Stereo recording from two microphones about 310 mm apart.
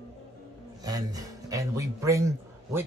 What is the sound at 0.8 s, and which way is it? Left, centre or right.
A man's voice, centre.